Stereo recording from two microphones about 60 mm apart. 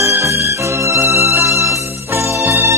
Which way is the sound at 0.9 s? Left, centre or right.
Right.